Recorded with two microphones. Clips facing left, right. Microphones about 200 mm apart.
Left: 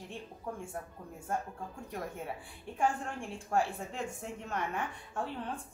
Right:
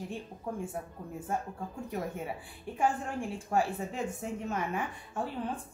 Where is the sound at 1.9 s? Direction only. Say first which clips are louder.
Right 4 dB; 5° right (ahead or behind).